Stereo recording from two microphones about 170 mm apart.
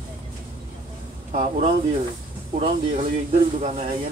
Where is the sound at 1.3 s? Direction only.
50° right (ahead or behind).